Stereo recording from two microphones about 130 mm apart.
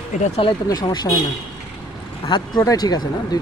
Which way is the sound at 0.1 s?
65° left (ahead or behind).